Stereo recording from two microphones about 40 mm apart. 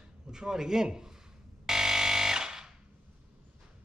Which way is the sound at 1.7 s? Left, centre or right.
Centre.